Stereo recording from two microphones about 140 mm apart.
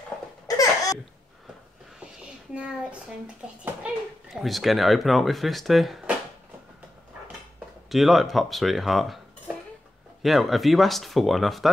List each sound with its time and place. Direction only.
0.5 s a sound: 25° left (ahead or behind)
2.5 s speech: 10° right (ahead or behind)
7.9 s speech: centre (ahead or behind)
10.2 s speech: centre (ahead or behind)